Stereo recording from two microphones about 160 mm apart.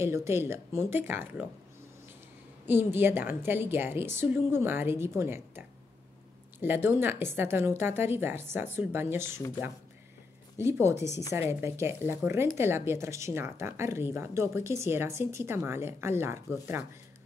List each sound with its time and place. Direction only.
0.0 s speech: 15° right (ahead or behind)
2.6 s speech: 15° right (ahead or behind)
10.6 s speech: 15° right (ahead or behind)